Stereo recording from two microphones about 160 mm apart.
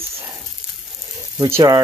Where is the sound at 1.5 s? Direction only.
20° right (ahead or behind).